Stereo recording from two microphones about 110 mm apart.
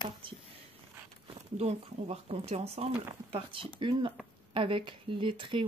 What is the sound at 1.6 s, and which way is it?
Speech, 70° right (ahead or behind).